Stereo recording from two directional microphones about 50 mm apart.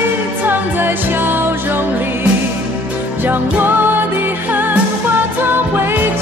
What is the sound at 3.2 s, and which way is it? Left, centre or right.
Music, right.